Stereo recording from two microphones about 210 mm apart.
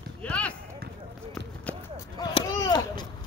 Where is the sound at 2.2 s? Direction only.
20° left (ahead or behind).